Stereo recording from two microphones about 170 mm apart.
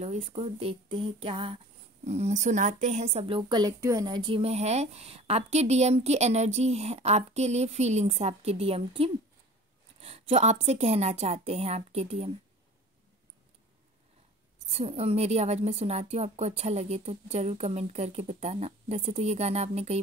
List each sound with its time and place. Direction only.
0.0 s speech: 40° right (ahead or behind)
14.7 s speech: 40° right (ahead or behind)